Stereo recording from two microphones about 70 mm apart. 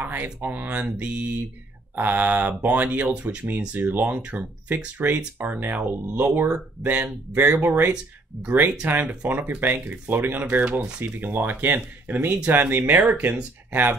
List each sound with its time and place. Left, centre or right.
0.0 s speech: right